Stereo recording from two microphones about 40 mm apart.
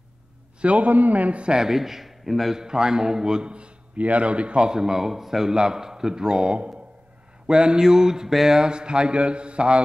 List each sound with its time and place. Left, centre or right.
0.6 s a man's voice: right
1.5 s a man's voice: centre
2.5 s a man's voice: centre
8.5 s a man's voice: right